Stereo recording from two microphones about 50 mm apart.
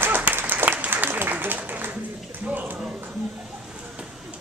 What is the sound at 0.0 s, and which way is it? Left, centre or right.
Applause, right.